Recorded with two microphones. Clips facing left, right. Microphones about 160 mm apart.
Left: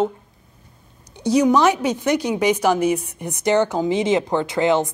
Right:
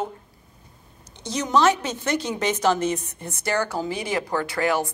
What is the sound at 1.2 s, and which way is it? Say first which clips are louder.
A woman's voice: left 6 dB; 10° left (ahead or behind).